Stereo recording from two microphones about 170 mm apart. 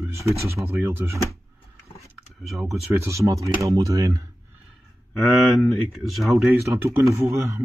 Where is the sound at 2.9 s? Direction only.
15° right (ahead or behind).